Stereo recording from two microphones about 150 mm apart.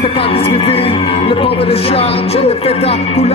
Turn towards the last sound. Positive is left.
turn(degrees=45)  # may be behind; listen again after turning